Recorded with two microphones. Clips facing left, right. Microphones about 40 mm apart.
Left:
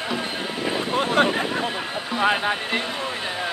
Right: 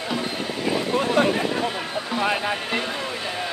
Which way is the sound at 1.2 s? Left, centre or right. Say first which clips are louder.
Left 1 dB; left.